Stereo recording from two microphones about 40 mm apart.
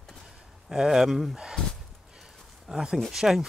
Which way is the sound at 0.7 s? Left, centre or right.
Centre.